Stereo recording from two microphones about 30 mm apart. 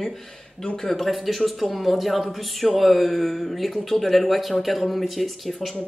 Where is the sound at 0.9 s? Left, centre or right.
Centre.